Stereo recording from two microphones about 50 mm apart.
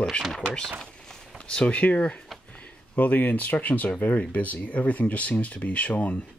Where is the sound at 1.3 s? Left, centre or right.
Centre.